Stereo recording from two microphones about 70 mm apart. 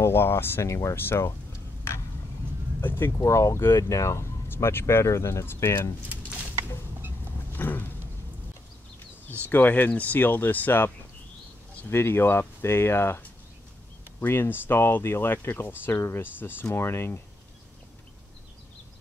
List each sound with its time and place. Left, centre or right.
0.0 s speech: left
2.8 s speech: left
7.5 s a sound: left
9.5 s speech: left
11.9 s speech: left
14.2 s speech: left